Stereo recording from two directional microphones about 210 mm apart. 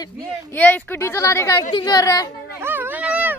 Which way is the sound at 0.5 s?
10° left (ahead or behind).